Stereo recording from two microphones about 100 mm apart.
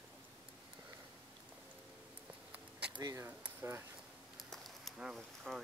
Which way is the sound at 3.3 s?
20° right (ahead or behind).